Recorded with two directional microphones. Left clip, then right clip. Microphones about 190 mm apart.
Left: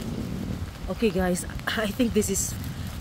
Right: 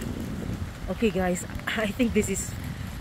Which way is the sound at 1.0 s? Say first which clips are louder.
Left 1 dB; 5° left (ahead or behind).